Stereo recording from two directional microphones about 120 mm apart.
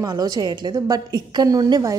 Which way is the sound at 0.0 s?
30° right (ahead or behind).